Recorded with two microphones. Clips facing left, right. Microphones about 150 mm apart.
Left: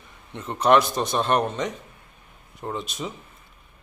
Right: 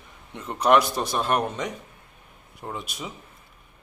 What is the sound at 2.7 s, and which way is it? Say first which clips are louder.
Speech: left 4 dB; 10° right (ahead or behind).